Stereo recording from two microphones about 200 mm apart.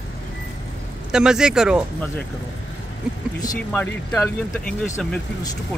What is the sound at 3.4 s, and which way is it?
Speech, 10° left (ahead or behind).